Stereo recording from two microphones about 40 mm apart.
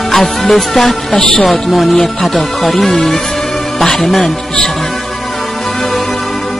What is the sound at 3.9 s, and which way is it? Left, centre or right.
Speech, centre.